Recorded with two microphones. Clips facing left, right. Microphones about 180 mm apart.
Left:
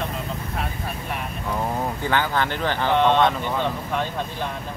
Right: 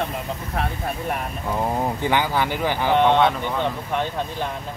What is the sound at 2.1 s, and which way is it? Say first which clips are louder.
Speech: left 1 dB; 10° right (ahead or behind).